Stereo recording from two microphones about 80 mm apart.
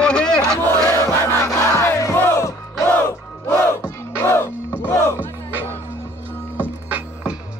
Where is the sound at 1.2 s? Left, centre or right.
Left.